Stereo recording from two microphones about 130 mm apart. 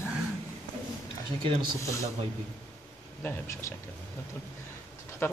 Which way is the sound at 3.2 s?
20° left (ahead or behind).